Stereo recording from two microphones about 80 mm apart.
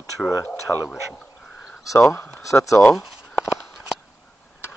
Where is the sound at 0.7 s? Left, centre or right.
Centre.